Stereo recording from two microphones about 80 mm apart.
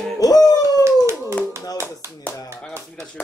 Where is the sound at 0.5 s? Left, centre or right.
Left.